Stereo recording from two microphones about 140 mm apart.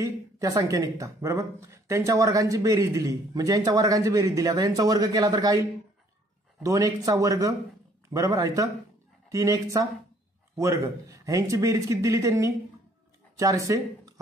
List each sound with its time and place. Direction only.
0.0 s speech: 20° right (ahead or behind)